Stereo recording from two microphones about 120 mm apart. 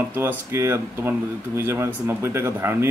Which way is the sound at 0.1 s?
15° right (ahead or behind).